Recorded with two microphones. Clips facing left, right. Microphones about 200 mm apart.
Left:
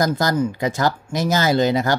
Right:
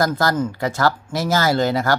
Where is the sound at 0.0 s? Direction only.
20° left (ahead or behind).